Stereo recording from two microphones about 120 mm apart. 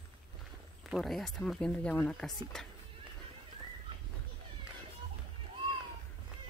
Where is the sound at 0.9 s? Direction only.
Centre (ahead or behind).